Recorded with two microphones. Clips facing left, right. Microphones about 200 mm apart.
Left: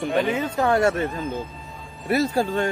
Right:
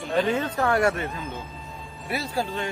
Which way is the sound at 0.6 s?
20° left (ahead or behind).